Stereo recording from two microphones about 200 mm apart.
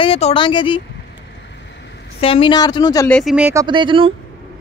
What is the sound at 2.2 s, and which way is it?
Speech, 25° left (ahead or behind).